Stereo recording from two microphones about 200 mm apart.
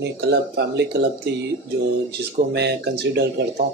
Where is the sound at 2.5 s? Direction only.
60° right (ahead or behind).